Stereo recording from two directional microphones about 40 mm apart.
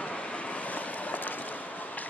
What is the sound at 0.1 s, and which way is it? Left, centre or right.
Vehicle, left.